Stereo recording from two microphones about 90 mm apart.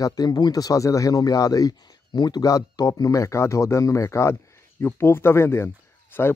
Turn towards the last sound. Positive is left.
turn(degrees=25)  # may be behind; listen again after turning